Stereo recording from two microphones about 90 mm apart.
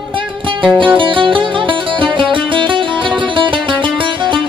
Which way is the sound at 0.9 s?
70° right (ahead or behind).